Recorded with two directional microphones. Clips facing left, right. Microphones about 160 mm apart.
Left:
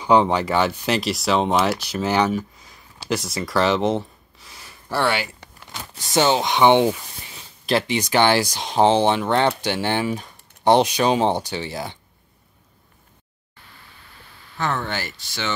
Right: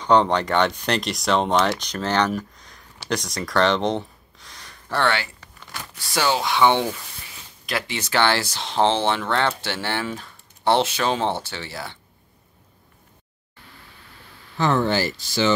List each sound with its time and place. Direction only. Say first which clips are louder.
0.0 s speech: left 1 dB; 5° left (ahead or behind); by 7.9 s 30° left (ahead or behind)
7.9 s speech: left 2 dB; 15° left (ahead or behind)
15.0 s speech: right 8 dB; 35° right (ahead or behind)